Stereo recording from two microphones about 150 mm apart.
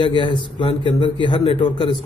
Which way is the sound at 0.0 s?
30° left (ahead or behind).